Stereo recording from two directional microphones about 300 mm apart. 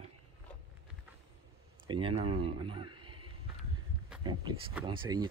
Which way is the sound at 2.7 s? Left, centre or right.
Centre.